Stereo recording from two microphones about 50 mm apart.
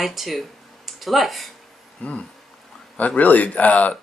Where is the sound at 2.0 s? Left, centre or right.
Left.